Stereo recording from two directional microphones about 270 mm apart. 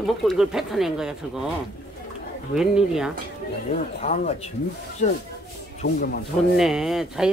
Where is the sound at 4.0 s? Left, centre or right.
Left.